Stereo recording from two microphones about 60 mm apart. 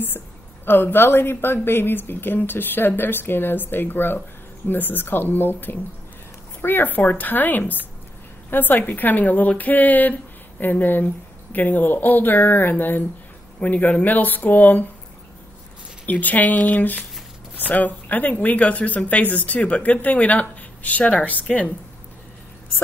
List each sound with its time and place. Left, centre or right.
0.7 s a woman's voice: left
16.1 s speech: left